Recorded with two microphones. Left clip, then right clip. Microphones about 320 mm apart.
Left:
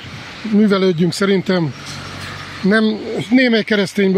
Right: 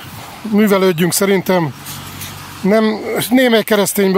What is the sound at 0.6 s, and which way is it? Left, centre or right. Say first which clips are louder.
Speech: right 3 dB; right.